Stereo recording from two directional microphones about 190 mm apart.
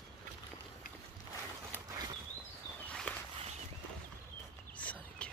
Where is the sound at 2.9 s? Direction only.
5° left (ahead or behind).